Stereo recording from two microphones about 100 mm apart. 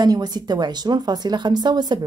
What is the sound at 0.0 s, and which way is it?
Speech, 45° right (ahead or behind).